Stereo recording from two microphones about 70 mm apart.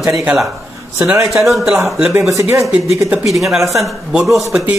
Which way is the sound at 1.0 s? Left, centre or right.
Centre.